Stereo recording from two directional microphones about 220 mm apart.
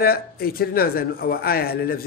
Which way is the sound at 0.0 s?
45° left (ahead or behind).